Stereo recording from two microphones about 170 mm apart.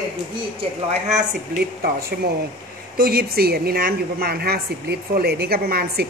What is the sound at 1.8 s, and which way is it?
A woman's voice, 65° right (ahead or behind).